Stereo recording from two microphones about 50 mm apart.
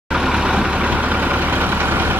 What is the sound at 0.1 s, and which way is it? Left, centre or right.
Vehicle, centre.